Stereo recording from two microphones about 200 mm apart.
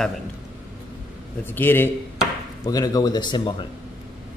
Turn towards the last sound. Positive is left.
turn(degrees=25)  # may be behind; listen again after turning